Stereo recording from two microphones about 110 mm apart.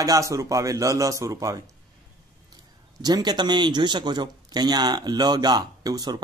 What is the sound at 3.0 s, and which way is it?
Speech, 40° right (ahead or behind).